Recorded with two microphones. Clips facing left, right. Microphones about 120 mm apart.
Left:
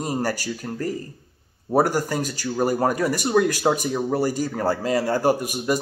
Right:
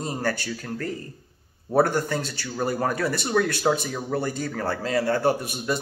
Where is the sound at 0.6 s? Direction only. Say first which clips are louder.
Left 4 dB; 20° left (ahead or behind).